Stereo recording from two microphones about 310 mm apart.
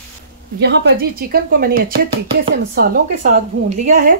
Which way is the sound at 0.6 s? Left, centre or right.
Right.